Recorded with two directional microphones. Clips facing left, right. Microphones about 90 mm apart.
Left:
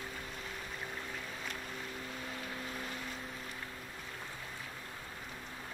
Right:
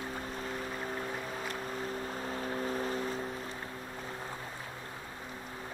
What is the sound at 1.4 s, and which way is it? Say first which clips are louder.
Boat: right 6 dB; 40° right (ahead or behind).